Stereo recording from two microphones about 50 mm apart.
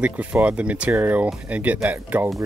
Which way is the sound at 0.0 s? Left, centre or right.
Right.